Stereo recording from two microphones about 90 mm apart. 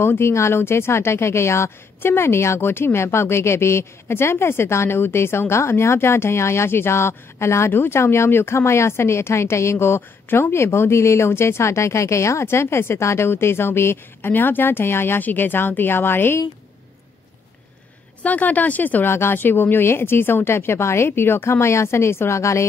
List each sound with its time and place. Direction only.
0.0 s speech: 25° left (ahead or behind)
18.2 s speech: 15° left (ahead or behind); by 22.7 s 35° left (ahead or behind)